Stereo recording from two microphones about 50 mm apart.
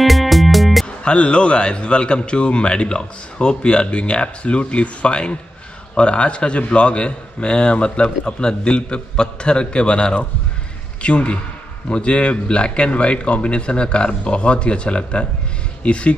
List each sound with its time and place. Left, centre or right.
0.0 s music: centre
0.8 s a man's voice: left